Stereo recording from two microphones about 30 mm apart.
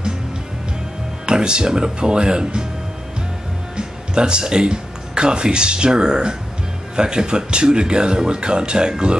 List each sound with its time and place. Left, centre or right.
1.2 s speech: right
3.7 s speech: right